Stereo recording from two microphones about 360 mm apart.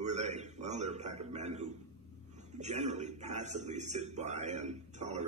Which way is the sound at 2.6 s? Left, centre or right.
Centre.